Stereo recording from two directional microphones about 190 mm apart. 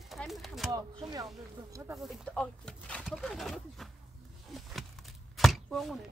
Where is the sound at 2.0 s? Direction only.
Centre (ahead or behind).